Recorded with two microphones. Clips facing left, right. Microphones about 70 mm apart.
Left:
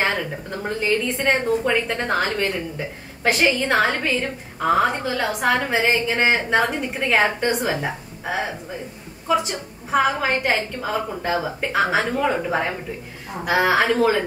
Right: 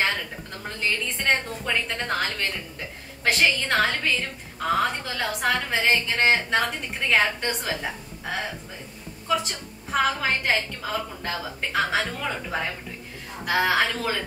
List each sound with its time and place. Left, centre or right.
0.0 s a woman's voice: centre
9.3 s a woman's voice: centre